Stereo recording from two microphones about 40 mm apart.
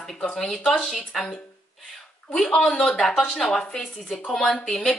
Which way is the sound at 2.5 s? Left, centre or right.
Centre.